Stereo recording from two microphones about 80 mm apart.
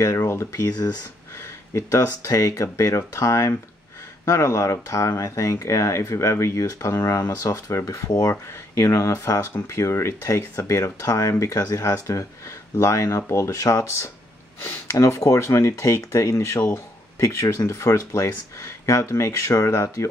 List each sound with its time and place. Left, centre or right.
0.0 s speech: left
1.7 s speech: left